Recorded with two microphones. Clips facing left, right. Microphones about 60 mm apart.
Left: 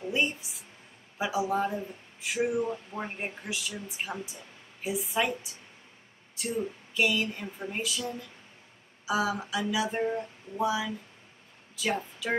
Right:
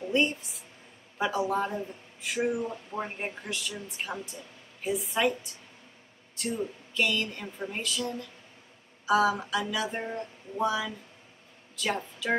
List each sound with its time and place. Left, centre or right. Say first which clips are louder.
0.1 s speech: right 3 dB; centre